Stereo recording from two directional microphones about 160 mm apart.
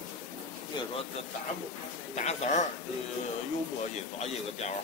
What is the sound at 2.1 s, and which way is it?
Speech, 45° left (ahead or behind).